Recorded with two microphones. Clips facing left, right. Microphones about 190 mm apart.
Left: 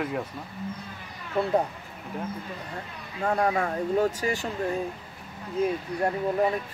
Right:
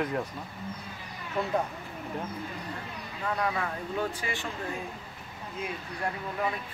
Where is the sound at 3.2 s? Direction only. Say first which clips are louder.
Left 6 dB; 45° left (ahead or behind).